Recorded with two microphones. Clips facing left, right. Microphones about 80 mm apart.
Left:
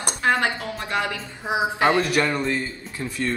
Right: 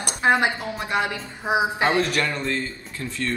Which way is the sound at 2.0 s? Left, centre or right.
Centre.